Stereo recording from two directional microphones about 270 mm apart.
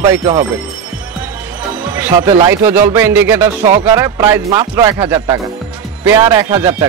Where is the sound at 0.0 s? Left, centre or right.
Centre.